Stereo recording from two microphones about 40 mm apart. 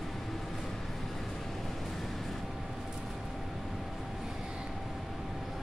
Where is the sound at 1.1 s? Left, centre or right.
Centre.